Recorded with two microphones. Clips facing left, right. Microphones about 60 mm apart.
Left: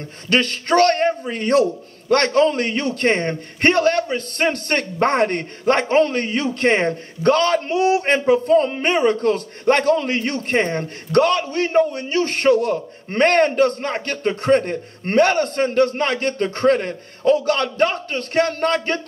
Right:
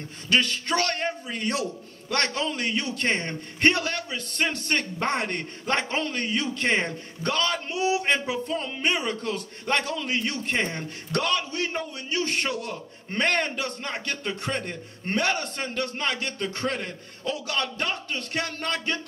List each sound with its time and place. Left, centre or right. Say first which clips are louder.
0.3 s a man's voice: left 6 dB; left